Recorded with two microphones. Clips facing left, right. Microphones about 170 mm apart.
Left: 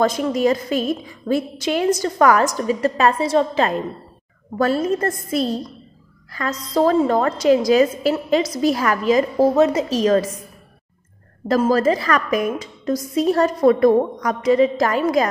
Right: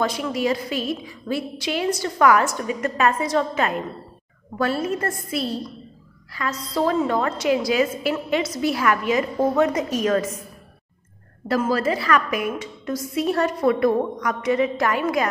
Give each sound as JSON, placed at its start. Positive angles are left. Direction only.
{"t": 0.0, "sound": "a woman's voice", "side_deg": 45}
{"t": 4.6, "sound": "a woman's voice", "side_deg": 40}
{"t": 6.6, "sound": "a woman's voice", "side_deg": 45}
{"t": 11.4, "sound": "a woman's voice", "side_deg": 40}